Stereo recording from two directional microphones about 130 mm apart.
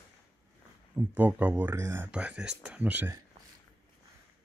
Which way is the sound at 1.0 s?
15° right (ahead or behind).